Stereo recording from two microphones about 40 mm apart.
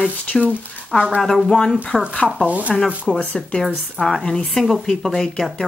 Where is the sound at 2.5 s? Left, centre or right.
Right.